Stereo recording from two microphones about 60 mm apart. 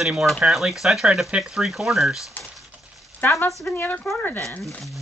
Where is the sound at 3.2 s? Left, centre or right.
Left.